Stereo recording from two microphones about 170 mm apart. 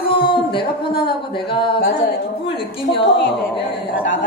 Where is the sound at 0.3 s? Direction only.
30° left (ahead or behind).